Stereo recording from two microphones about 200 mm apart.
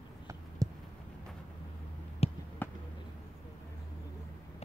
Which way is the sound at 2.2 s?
30° left (ahead or behind).